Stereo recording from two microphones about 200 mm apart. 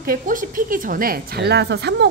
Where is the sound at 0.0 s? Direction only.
45° right (ahead or behind).